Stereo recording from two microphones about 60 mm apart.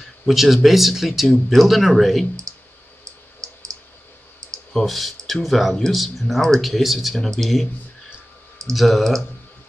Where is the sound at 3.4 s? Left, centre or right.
Right.